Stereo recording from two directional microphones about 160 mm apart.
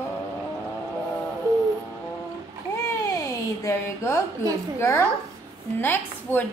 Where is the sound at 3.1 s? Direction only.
20° left (ahead or behind).